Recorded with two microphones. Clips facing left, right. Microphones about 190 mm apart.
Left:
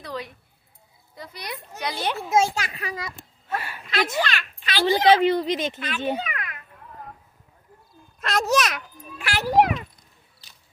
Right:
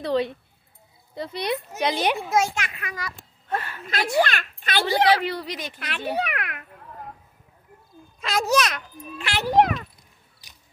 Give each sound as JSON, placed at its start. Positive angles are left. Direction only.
{"t": 0.0, "sound": "speech", "side_deg": -25}
{"t": 2.2, "sound": "a child's voice", "side_deg": 25}
{"t": 3.2, "sound": "a sound", "side_deg": 5}
{"t": 4.2, "sound": "a child's voice", "side_deg": -50}
{"t": 4.8, "sound": "speech", "side_deg": 20}
{"t": 5.8, "sound": "a child's voice", "side_deg": -75}
{"t": 8.2, "sound": "a child's voice", "side_deg": 0}
{"t": 10.4, "sound": "a sound", "side_deg": -15}